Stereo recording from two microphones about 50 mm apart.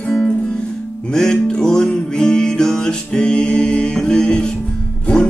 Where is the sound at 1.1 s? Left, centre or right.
Centre.